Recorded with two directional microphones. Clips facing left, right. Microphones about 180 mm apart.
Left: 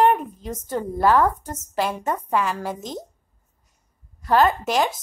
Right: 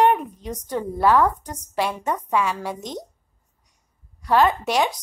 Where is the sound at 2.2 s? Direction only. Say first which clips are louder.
Right 1 dB; 50° left (ahead or behind).